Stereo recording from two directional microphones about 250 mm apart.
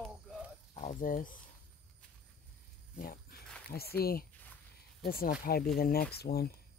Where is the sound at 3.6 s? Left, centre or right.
Left.